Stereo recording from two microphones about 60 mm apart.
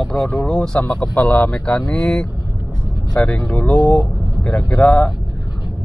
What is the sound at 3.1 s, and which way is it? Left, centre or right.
Speech, centre.